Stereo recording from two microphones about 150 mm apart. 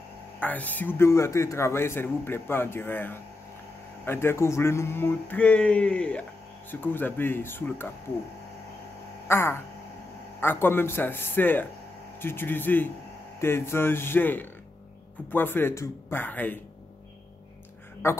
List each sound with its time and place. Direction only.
0.4 s speech: 10° left (ahead or behind)
9.3 s speech: 15° left (ahead or behind)
18.0 s speech: 15° left (ahead or behind)